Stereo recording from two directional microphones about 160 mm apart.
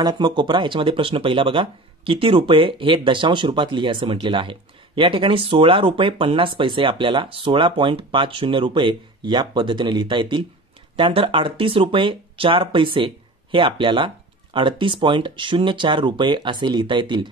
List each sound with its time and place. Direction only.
0.0 s speech: 30° right (ahead or behind)